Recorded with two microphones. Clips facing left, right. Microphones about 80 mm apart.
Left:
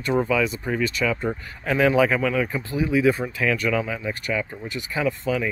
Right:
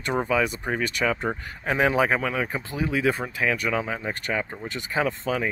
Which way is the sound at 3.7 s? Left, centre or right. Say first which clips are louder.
Left 2 dB; right.